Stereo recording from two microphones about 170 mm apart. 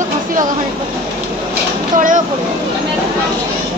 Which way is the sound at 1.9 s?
50° right (ahead or behind).